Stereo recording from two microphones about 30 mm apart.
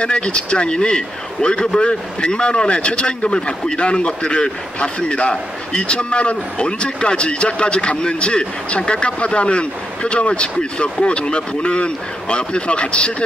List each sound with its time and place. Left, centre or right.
0.0 s a man's voice: left